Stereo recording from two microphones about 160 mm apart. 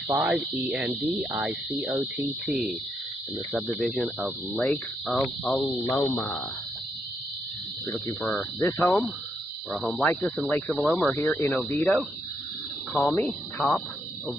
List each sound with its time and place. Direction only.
0.1 s speech: 10° right (ahead or behind)
3.6 s speech: 10° left (ahead or behind)
7.8 s speech: 15° left (ahead or behind)
9.7 s speech: 5° left (ahead or behind)
11.1 s speech: 15° left (ahead or behind)
13.1 s speech: 15° left (ahead or behind)
13.7 s cricket: 5° left (ahead or behind)